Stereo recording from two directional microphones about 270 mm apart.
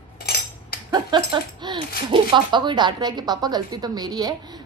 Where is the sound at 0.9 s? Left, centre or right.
Centre.